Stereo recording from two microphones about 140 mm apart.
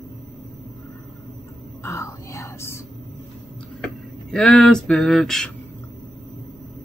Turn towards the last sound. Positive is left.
turn(degrees=0)  # may be behind; listen again after turning